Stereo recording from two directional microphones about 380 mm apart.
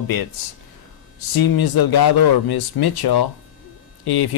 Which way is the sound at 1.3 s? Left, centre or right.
Left.